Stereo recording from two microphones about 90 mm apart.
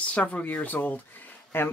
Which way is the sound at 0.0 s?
15° left (ahead or behind).